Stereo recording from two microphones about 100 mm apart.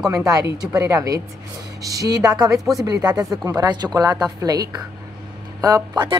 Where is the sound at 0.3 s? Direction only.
35° right (ahead or behind).